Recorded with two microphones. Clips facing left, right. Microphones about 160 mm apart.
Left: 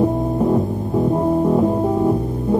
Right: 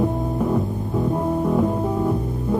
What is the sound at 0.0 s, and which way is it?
Music, 30° left (ahead or behind).